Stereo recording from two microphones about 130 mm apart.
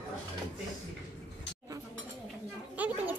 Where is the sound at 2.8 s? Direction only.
10° right (ahead or behind).